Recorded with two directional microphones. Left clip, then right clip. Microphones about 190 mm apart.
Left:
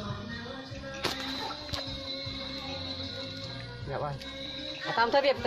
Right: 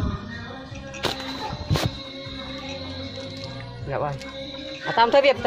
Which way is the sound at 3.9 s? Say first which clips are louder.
Right 8 dB; 35° right (ahead or behind).